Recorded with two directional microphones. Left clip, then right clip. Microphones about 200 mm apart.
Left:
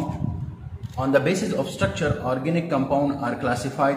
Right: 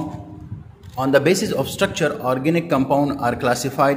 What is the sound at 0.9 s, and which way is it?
A man's voice, 45° right (ahead or behind).